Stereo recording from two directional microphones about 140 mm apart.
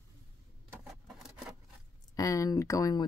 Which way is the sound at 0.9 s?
5° right (ahead or behind).